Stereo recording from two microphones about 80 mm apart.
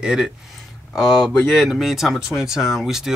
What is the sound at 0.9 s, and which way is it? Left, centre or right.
Speech, centre.